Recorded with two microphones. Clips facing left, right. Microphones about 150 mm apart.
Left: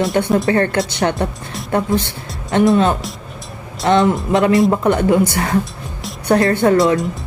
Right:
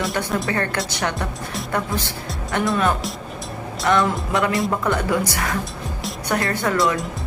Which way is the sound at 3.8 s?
25° left (ahead or behind).